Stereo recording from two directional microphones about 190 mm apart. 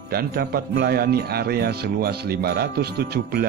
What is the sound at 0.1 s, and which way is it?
A man's voice, 55° right (ahead or behind).